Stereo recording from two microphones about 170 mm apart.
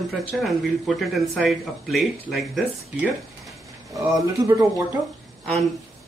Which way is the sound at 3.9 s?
20° right (ahead or behind).